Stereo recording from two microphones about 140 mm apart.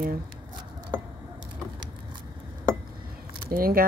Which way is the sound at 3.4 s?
90° right.